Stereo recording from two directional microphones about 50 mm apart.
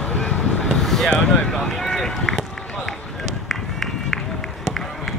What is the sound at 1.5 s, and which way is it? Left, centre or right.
Run, centre.